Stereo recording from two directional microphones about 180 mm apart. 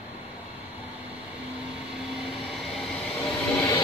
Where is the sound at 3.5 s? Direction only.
20° left (ahead or behind).